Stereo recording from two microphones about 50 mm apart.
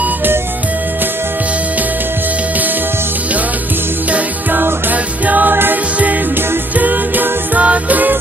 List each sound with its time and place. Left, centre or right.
0.0 s music: right
4.1 s music: right
6.8 s music: right